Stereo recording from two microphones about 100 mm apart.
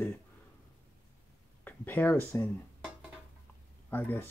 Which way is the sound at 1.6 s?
20° left (ahead or behind).